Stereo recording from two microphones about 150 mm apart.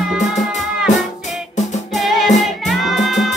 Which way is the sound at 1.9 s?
Centre (ahead or behind).